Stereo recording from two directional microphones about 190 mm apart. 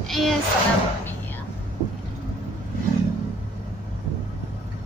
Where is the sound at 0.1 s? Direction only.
Centre (ahead or behind).